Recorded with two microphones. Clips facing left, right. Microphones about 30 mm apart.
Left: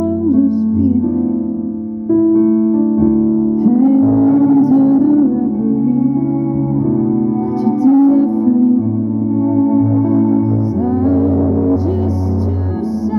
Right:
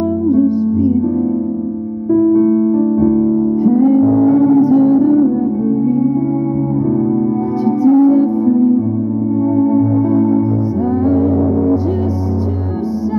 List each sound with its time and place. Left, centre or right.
0.3 s music: centre
2.1 s music: centre
7.6 s music: centre